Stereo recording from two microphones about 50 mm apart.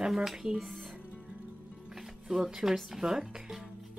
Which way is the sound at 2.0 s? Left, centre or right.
Centre.